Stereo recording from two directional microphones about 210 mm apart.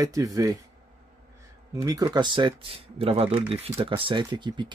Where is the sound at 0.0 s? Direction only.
15° right (ahead or behind).